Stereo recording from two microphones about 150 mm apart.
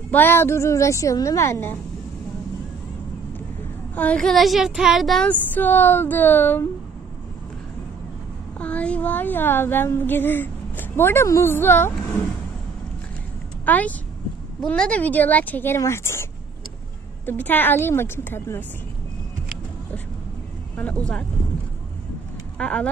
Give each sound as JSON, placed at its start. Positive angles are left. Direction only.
{"t": 0.1, "sound": "a woman's voice", "side_deg": 15}
{"t": 3.9, "sound": "speech", "side_deg": 10}
{"t": 8.5, "sound": "speech", "side_deg": 10}
{"t": 13.7, "sound": "speech", "side_deg": 10}
{"t": 17.3, "sound": "speech", "side_deg": 15}
{"t": 20.7, "sound": "speech", "side_deg": 10}
{"t": 22.6, "sound": "speech", "side_deg": 5}